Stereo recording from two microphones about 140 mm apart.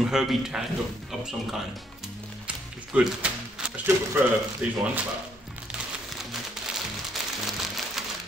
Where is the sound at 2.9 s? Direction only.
10° right (ahead or behind).